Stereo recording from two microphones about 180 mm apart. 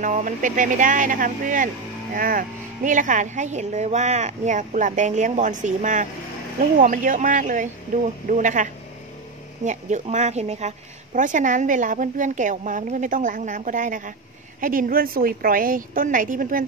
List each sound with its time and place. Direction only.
0.0 s a woman's voice: 45° right (ahead or behind)